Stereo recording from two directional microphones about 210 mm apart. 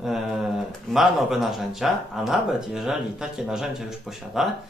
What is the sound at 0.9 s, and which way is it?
Speech, centre (ahead or behind).